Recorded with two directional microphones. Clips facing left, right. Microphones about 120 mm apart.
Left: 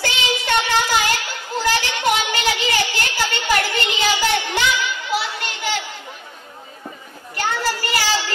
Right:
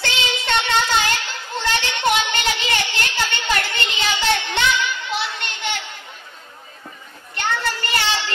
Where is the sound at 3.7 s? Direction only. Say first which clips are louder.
Left 3 dB; 25° right (ahead or behind).